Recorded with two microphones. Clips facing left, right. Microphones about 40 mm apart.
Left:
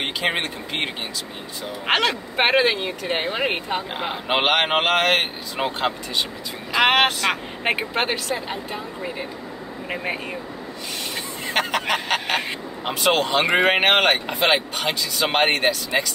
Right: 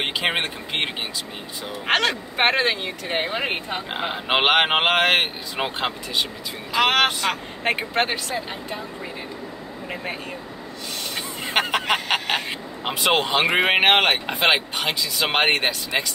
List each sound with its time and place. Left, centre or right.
0.0 s speech: centre
1.9 s speech: centre
4.0 s speech: centre
6.8 s speech: left
7.7 s speech: centre
11.4 s a sound: centre
12.8 s speech: centre